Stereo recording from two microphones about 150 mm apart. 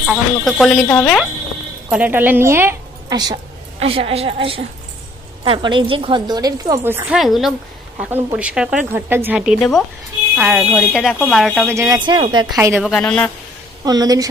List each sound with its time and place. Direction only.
0.0 s speech: centre (ahead or behind)
1.9 s speech: 10° right (ahead or behind)
3.1 s a woman's voice: 25° right (ahead or behind)
3.8 s a woman's voice: 40° right (ahead or behind); by 6.8 s 25° right (ahead or behind)
6.8 s speech: 15° right (ahead or behind)
7.2 s speech: centre (ahead or behind)
11.6 s speech: 20° right (ahead or behind)
12.1 s a woman's voice: 30° right (ahead or behind)
12.5 s speech: 15° right (ahead or behind)
12.8 s a woman's voice: 5° left (ahead or behind)
13.8 s a woman's voice: 25° right (ahead or behind)